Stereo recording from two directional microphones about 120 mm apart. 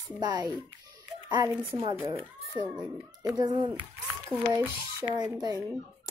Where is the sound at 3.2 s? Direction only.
30° right (ahead or behind).